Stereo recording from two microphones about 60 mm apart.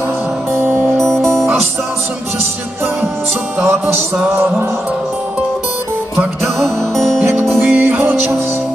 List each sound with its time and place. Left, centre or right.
0.6 s music: right
0.9 s music: centre
6.1 s music: centre
7.6 s music: right